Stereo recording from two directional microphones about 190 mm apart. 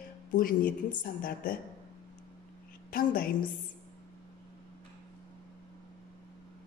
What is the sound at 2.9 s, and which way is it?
Speech, 50° left (ahead or behind).